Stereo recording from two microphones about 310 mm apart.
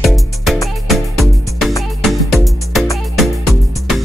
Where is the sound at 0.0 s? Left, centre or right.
Centre.